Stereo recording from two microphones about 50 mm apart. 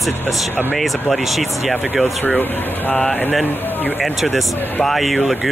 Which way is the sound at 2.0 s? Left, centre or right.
Left.